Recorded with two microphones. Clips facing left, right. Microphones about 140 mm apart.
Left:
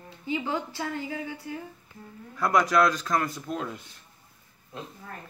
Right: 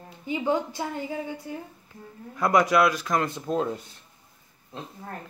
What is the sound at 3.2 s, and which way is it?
Speech, 25° right (ahead or behind).